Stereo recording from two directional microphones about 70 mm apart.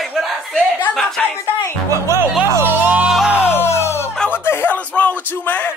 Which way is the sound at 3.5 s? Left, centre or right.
Left.